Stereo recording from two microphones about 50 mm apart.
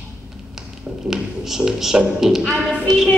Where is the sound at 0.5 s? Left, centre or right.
Centre.